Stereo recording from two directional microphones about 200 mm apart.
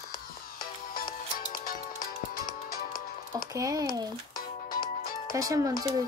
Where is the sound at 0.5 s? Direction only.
45° left (ahead or behind).